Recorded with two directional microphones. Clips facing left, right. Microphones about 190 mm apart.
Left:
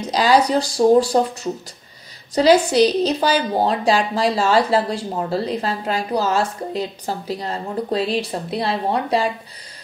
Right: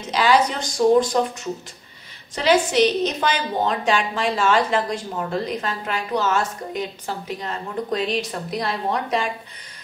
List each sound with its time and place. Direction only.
0.0 s a woman's voice: 35° left (ahead or behind)